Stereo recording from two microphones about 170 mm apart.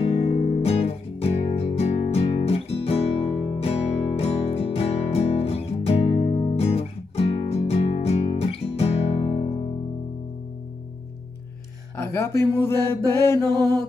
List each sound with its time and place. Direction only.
0.0 s music: 35° left (ahead or behind)
12.0 s a sound: 15° left (ahead or behind)
12.8 s mantra: 15° left (ahead or behind)